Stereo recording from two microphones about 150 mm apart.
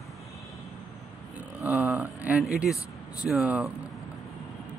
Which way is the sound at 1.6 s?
5° right (ahead or behind).